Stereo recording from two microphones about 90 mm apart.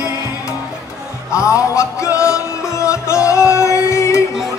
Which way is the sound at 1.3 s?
35° left (ahead or behind).